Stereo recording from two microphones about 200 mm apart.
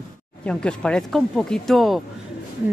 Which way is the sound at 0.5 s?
5° left (ahead or behind).